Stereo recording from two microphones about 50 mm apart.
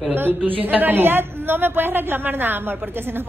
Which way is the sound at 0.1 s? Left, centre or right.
Right.